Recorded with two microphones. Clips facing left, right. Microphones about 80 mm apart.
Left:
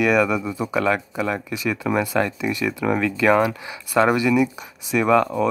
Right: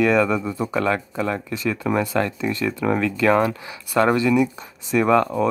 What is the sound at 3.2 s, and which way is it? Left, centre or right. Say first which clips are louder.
Speech: left 1 dB; centre.